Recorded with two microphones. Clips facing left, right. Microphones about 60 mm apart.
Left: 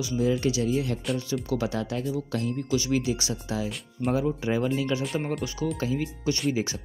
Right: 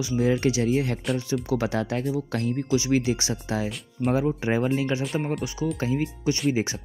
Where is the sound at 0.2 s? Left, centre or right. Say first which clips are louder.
Right 2 dB; right.